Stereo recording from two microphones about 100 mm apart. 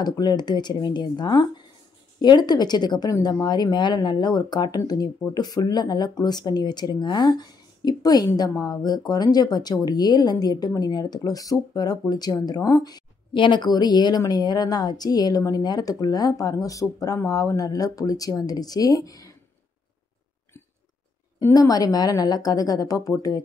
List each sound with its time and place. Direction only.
0.0 s speech: 45° left (ahead or behind)
21.5 s speech: 40° left (ahead or behind)